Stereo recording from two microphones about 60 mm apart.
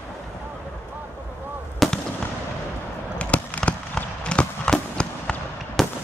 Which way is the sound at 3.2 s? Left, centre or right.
Left.